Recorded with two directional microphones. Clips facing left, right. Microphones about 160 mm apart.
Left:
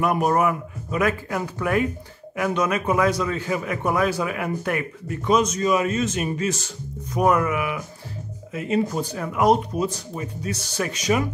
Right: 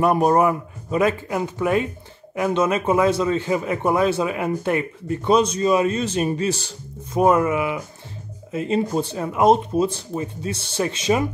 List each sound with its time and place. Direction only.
0.0 s speech: 30° right (ahead or behind)